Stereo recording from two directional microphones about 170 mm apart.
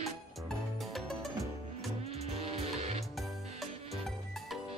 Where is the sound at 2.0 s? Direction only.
40° right (ahead or behind).